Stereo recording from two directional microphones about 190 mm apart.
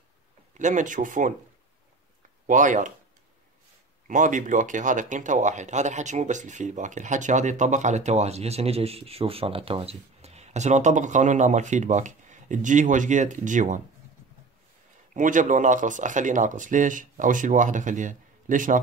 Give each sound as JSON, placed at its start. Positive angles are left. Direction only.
{"t": 0.6, "sound": "speech", "side_deg": -40}
{"t": 2.4, "sound": "speech", "side_deg": -45}
{"t": 4.1, "sound": "speech", "side_deg": -45}
{"t": 15.1, "sound": "speech", "side_deg": -40}